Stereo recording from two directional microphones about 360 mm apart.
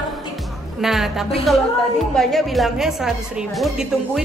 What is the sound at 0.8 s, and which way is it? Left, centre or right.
A woman's voice, centre.